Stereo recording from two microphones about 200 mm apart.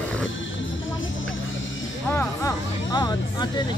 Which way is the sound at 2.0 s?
15° left (ahead or behind).